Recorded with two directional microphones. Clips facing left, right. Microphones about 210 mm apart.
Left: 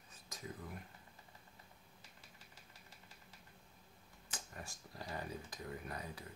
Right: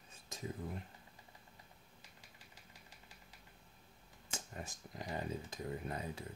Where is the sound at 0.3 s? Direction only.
25° right (ahead or behind).